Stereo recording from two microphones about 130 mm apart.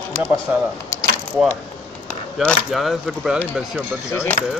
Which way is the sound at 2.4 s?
Centre (ahead or behind).